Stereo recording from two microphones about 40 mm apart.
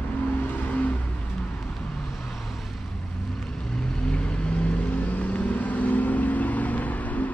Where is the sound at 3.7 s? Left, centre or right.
Centre.